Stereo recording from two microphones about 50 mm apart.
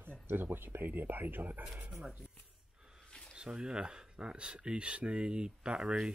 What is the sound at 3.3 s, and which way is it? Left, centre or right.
Speech, centre.